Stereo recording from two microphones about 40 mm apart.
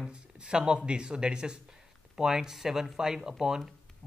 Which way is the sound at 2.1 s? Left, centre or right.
Centre.